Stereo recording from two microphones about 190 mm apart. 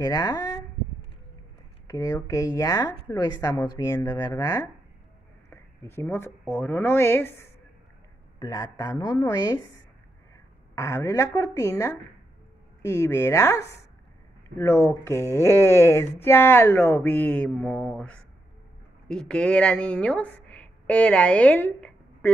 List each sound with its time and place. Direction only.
0.0 s a woman's voice: 20° left (ahead or behind)
1.9 s a woman's voice: 20° left (ahead or behind)
10.7 s speech: 15° left (ahead or behind)